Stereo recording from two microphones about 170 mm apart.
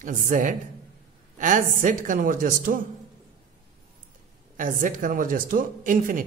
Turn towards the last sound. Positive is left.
turn(degrees=-55)  # may be behind; listen again after turning